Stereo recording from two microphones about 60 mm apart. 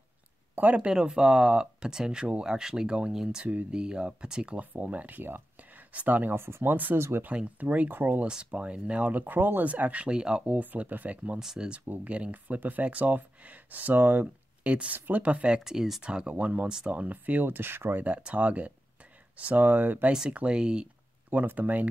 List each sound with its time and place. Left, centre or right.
0.6 s speech: right
0.8 s speech: centre
4.6 s speech: right
7.0 s speech: right
7.2 s speech: right
8.5 s speech: centre
10.4 s speech: right
11.3 s speech: centre
11.9 s speech: right
14.2 s speech: right
18.0 s speech: right
20.1 s speech: centre
21.3 s speech: right